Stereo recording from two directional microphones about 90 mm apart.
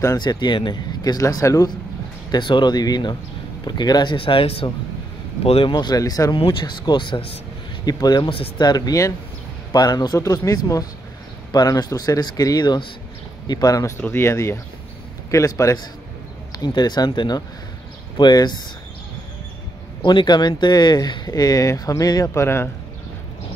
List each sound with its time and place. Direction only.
0.2 s speech: 55° left (ahead or behind)
1.0 s speech: 45° left (ahead or behind)
2.3 s speech: 60° left (ahead or behind); by 5.7 s 90° left
5.7 s speech: 50° left (ahead or behind)
6.3 s speech: 65° left (ahead or behind)
7.8 s speech: 45° left (ahead or behind)
14.0 s a man's voice: 25° left (ahead or behind)
16.5 s speech: 55° left (ahead or behind)
20.0 s speech: 60° left (ahead or behind); by 22.3 s 40° left (ahead or behind)
22.3 s a man's voice: 30° left (ahead or behind)